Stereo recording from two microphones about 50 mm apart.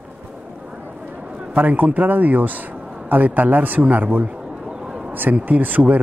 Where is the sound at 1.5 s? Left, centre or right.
Right.